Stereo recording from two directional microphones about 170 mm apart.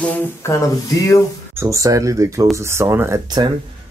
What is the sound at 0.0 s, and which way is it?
Speech, 15° left (ahead or behind).